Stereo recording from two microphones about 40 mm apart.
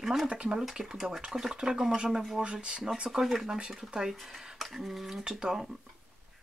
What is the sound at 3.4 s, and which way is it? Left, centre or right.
Speech, right.